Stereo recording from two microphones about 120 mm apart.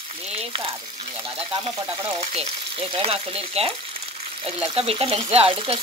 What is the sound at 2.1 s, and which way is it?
Frying, 60° right (ahead or behind).